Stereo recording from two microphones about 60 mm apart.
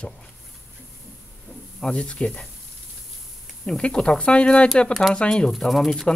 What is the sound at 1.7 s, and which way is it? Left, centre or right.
Speech, centre.